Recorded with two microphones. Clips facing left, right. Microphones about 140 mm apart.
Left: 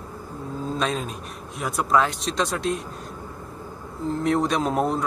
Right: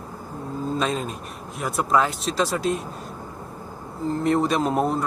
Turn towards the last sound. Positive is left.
turn(degrees=0)  # may be behind; listen again after turning